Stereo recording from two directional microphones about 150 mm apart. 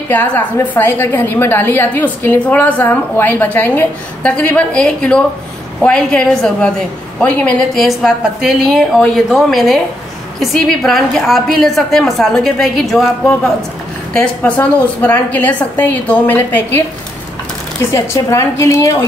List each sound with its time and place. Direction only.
0.1 s a woman's voice: 10° left (ahead or behind)
13.2 s a woman's voice: 10° left (ahead or behind)
17.9 s a woman's voice: 20° left (ahead or behind)